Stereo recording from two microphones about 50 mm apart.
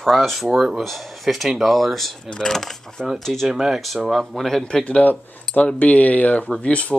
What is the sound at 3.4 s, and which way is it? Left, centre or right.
Speech, centre.